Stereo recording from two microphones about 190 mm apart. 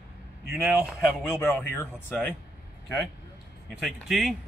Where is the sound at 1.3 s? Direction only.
10° left (ahead or behind).